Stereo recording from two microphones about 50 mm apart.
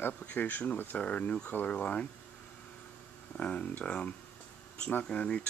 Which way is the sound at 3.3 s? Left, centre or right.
Left.